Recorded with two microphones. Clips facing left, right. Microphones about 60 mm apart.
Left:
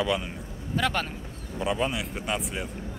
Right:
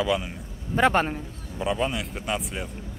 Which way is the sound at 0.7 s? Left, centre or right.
Right.